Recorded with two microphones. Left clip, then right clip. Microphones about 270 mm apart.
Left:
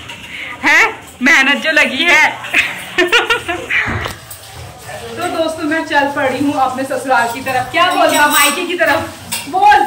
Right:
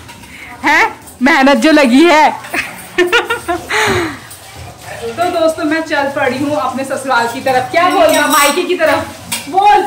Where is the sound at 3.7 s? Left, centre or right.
Right.